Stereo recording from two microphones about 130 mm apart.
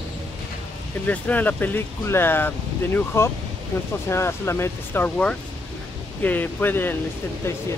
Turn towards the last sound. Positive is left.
turn(degrees=20)  # may be behind; listen again after turning